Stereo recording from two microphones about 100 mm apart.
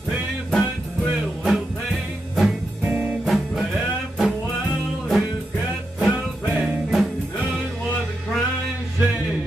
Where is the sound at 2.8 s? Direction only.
15° right (ahead or behind).